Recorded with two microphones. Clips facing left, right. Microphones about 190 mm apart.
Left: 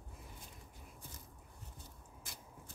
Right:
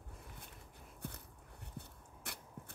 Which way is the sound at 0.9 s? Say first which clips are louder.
Right 10 dB; 60° right (ahead or behind).